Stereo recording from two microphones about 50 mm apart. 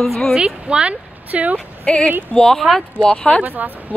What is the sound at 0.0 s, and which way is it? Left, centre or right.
Speech, centre.